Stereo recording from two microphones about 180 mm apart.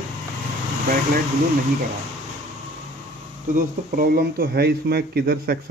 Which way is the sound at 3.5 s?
55° right (ahead or behind).